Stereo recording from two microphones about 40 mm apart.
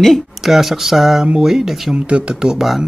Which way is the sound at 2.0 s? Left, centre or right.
Right.